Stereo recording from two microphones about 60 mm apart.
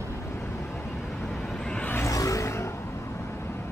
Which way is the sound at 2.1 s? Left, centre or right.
Left.